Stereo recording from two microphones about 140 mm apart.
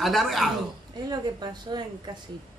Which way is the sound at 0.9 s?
30° right (ahead or behind).